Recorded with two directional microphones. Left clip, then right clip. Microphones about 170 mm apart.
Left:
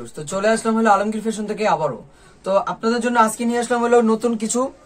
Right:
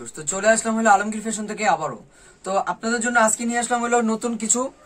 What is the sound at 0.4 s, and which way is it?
A man's voice, 5° right (ahead or behind).